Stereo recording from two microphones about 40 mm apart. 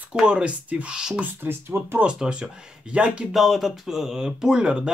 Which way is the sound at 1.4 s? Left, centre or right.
Right.